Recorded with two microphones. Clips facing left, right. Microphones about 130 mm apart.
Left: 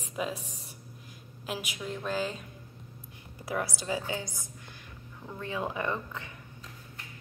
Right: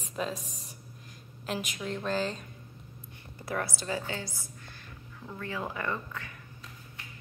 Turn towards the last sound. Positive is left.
turn(degrees=20)  # may be behind; listen again after turning